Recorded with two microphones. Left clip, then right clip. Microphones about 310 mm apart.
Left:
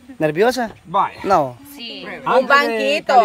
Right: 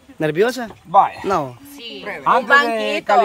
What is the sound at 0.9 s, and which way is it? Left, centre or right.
Speech, centre.